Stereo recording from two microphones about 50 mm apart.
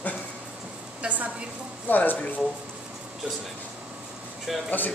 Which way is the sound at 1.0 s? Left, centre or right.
Right.